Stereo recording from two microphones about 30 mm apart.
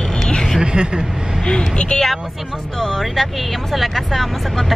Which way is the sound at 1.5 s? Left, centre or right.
Left.